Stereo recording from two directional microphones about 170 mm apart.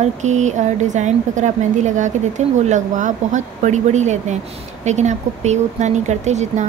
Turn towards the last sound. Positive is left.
turn(degrees=-40)  # may be behind; listen again after turning